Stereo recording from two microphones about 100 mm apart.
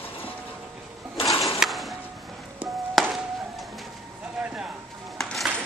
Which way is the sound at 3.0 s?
Centre (ahead or behind).